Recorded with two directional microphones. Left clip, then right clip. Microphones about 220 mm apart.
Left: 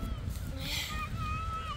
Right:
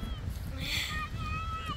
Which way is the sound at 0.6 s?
50° left (ahead or behind).